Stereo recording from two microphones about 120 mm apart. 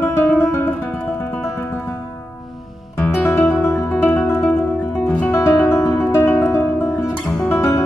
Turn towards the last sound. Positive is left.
turn(degrees=10)  # may be behind; listen again after turning